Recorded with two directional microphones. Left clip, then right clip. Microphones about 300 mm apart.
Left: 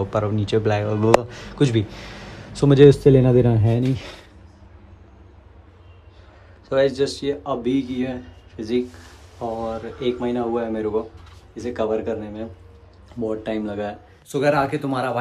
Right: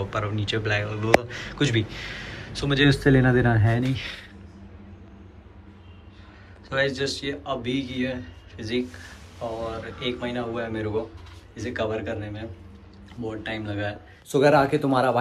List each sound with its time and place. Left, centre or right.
0.0 s a man's voice: centre
3.0 s speech: centre
3.9 s speech: centre
6.7 s a man's voice: centre
9.9 s a man's voice: left
14.3 s speech: centre